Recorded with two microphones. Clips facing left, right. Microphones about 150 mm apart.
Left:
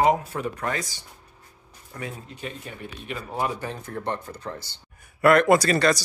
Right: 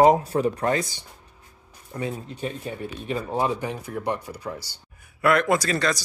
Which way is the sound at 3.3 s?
20° right (ahead or behind).